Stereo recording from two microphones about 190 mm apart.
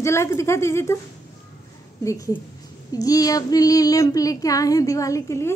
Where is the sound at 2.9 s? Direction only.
20° left (ahead or behind).